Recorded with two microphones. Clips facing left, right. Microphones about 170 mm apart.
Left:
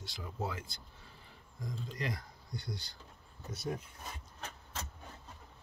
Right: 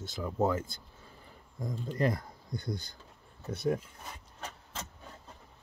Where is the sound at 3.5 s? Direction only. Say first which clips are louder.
Right 8 dB; 60° right (ahead or behind).